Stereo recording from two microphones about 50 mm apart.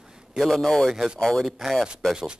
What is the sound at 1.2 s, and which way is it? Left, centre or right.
Speech, centre.